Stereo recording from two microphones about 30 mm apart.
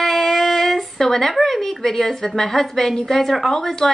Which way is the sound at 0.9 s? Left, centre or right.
Centre.